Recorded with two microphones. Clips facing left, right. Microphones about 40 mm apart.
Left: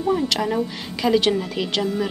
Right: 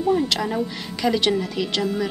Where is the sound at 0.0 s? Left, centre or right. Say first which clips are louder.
Even; centre.